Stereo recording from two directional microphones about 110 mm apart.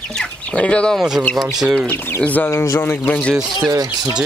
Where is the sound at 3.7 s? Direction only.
35° right (ahead or behind).